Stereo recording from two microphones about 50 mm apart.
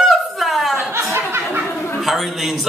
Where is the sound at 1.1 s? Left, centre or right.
Right.